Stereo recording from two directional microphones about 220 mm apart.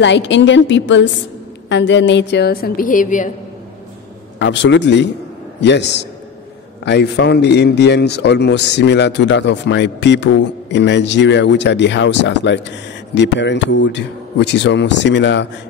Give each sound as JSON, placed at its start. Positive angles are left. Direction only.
{"t": 0.0, "sound": "a woman's voice", "side_deg": 55}
{"t": 4.4, "sound": "a man's voice", "side_deg": 55}